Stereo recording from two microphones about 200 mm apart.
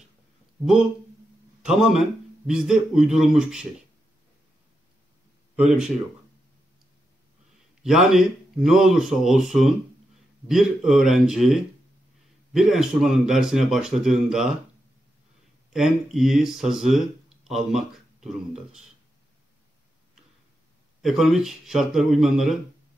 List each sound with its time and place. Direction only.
1.6 s speech: 5° right (ahead or behind)
5.6 s speech: 5° right (ahead or behind)
7.8 s speech: centre (ahead or behind)
15.7 s speech: centre (ahead or behind)
21.0 s speech: centre (ahead or behind)